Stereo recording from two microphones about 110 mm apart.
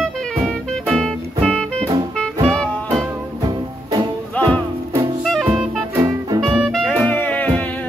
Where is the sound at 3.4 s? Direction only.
40° right (ahead or behind).